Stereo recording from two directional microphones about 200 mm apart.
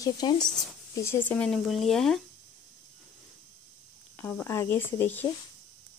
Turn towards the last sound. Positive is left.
turn(degrees=10)  # may be behind; listen again after turning